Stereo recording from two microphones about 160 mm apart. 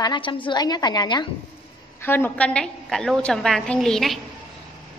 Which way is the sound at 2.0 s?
15° left (ahead or behind).